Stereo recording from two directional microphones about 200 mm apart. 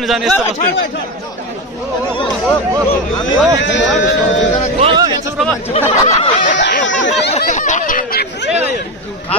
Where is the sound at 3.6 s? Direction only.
65° left (ahead or behind).